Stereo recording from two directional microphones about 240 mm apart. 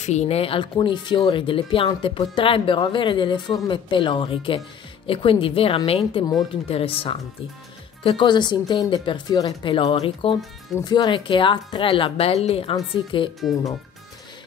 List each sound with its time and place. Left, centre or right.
0.0 s speech: left